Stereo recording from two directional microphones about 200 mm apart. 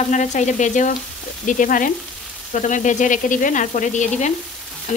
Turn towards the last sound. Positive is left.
turn(degrees=35)  # may be behind; listen again after turning